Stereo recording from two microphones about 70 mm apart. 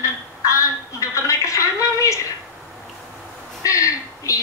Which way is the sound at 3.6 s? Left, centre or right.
Left.